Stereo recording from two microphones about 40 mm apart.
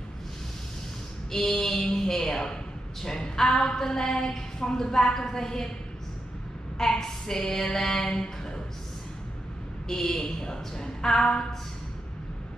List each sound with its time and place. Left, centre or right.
1.3 s speech: centre
6.8 s speech: centre
8.0 s speech: centre
9.8 s speech: centre